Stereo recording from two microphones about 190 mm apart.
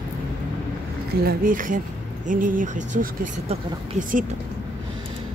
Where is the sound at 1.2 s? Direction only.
45° right (ahead or behind).